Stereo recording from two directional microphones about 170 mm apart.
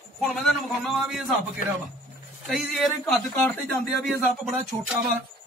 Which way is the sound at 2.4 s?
Centre (ahead or behind).